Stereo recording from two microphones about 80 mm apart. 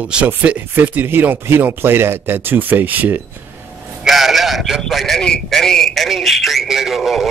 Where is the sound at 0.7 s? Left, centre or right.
Right.